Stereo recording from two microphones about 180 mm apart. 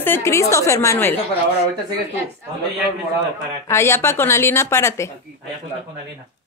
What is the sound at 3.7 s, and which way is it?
A woman's voice, 15° left (ahead or behind).